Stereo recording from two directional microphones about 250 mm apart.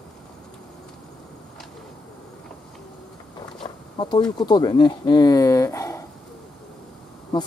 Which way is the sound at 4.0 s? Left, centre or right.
Centre.